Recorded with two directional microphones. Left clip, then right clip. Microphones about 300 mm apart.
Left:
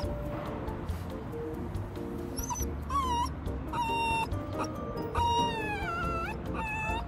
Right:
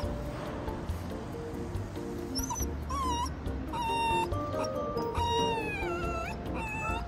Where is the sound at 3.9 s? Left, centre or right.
Centre.